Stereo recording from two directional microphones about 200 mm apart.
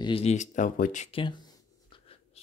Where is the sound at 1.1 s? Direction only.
25° left (ahead or behind).